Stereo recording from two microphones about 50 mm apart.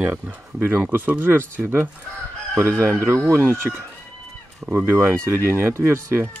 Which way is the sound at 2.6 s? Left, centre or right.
Right.